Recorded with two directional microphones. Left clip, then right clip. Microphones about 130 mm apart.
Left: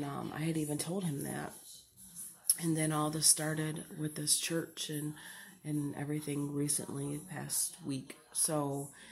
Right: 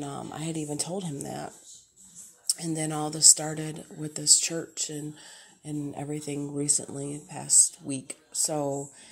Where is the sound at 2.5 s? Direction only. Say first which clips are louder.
Right 4 dB; 25° right (ahead or behind).